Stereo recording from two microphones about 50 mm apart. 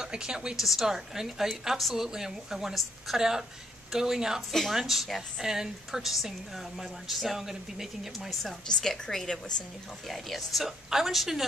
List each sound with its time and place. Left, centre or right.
0.0 s speech: centre
0.6 s a woman's voice: centre
4.5 s a woman's voice: centre